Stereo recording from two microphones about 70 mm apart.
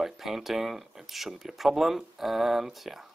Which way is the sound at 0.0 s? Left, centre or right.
Centre.